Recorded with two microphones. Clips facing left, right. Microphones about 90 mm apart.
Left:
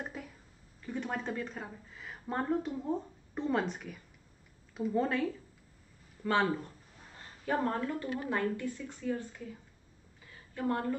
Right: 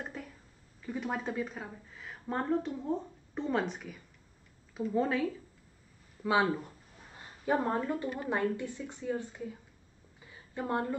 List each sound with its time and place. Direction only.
0.0 s a sound: 5° left (ahead or behind)
0.8 s a woman's voice: 5° right (ahead or behind); by 9.3 s 20° right (ahead or behind)
10.5 s a woman's voice: 20° right (ahead or behind)